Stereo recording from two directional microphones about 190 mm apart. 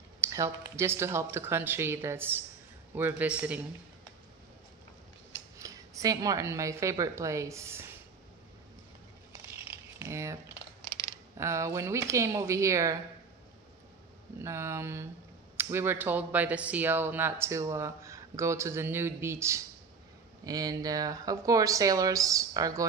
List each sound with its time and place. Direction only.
0.2 s speech: 15° right (ahead or behind)
5.6 s a woman's voice: 20° right (ahead or behind)
9.5 s crumpling: 15° right (ahead or behind)
11.3 s speech: 15° right (ahead or behind)
14.4 s speech: 15° right (ahead or behind)